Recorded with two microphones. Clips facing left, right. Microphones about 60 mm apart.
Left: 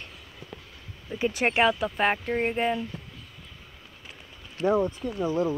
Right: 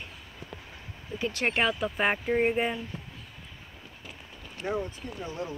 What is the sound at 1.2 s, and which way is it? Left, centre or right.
Speech, centre.